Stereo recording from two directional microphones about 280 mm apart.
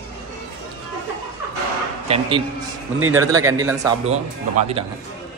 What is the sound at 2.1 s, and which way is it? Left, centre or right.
Speech, centre.